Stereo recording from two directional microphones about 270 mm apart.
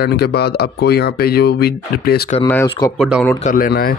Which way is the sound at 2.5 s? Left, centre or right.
Centre.